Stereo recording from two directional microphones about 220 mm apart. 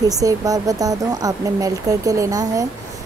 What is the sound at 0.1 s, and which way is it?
Speech, 15° right (ahead or behind).